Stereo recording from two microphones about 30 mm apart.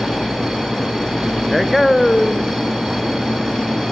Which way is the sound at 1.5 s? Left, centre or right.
Centre.